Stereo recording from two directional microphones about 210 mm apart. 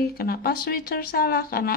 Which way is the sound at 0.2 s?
45° left (ahead or behind).